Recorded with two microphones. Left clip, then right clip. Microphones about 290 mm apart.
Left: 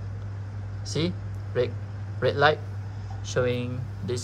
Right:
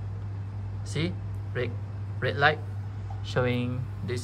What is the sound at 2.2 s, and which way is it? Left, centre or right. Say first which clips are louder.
A man's voice: left 3 dB; centre.